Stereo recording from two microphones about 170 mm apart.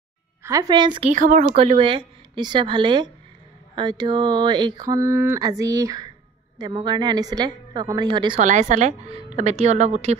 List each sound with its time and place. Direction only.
0.4 s speech: 20° right (ahead or behind)
1.1 s speech: 45° right (ahead or behind); by 8.4 s 25° right (ahead or behind)
8.4 s speech: 45° right (ahead or behind)